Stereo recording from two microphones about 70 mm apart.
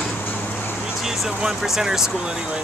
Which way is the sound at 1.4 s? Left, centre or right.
Centre.